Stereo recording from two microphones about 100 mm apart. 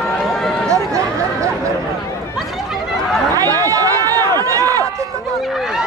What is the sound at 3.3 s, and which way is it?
Run, 35° right (ahead or behind).